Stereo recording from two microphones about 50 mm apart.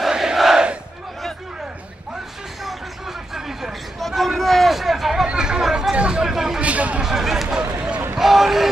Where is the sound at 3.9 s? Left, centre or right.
Centre.